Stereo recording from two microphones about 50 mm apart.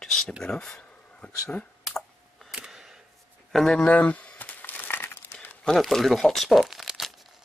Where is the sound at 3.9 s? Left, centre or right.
Left.